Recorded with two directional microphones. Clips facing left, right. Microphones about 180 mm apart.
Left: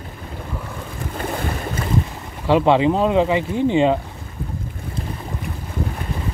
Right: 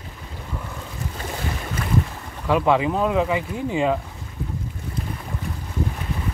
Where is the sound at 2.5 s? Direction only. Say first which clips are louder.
Left 4 dB; 30° left (ahead or behind).